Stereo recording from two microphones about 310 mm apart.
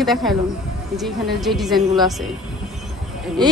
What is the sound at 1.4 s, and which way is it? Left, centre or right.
Speech, centre.